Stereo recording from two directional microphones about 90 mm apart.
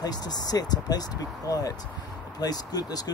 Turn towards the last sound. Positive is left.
turn(degrees=45)  # may be behind; listen again after turning